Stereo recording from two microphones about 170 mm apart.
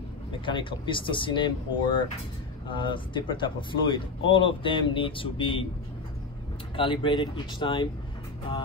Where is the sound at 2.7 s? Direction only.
30° left (ahead or behind).